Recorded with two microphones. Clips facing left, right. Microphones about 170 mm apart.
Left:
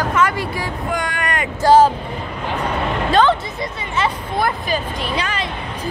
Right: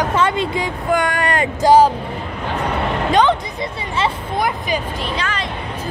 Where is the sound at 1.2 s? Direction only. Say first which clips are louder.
Right 4 dB; 30° right (ahead or behind).